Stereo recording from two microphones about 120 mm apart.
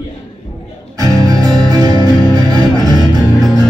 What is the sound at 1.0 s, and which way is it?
Music, 30° right (ahead or behind).